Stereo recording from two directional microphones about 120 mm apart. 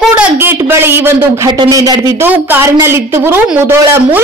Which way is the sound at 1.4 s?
35° right (ahead or behind).